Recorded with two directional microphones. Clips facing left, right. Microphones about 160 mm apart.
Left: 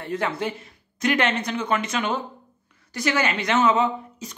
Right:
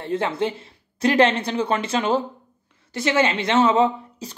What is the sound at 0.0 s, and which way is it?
Speech, 25° right (ahead or behind).